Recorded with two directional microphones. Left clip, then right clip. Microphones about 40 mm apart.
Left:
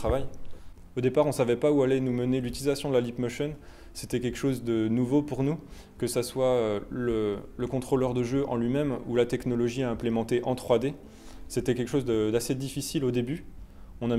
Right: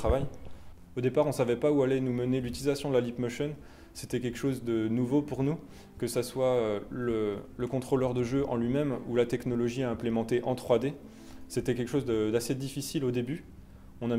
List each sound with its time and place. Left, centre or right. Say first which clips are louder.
0.0 s a man's voice: left 1 dB; left